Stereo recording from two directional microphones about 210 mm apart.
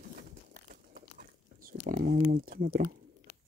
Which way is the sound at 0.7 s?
40° right (ahead or behind).